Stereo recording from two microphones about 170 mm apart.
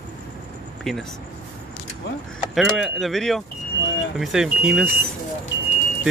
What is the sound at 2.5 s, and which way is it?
Speech, centre (ahead or behind).